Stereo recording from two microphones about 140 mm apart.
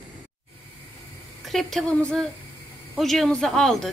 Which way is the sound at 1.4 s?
Centre (ahead or behind).